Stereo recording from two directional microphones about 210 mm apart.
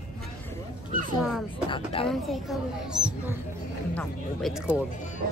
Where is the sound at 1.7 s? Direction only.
25° left (ahead or behind).